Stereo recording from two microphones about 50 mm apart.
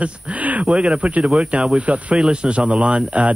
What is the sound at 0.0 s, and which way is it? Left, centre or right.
Speech, right.